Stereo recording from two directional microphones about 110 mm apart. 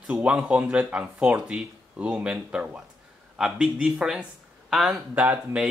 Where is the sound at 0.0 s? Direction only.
10° right (ahead or behind).